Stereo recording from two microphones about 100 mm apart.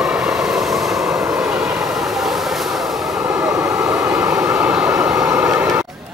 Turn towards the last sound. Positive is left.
turn(degrees=-5)  # may be behind; listen again after turning